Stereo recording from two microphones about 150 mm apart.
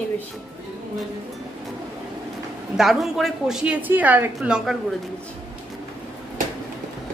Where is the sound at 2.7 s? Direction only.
Centre (ahead or behind).